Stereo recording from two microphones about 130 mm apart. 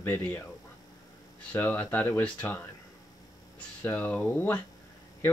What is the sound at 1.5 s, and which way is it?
Speech, 15° left (ahead or behind).